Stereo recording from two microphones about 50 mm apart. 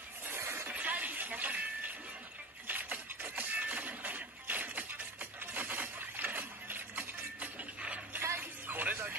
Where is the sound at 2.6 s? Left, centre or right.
Right.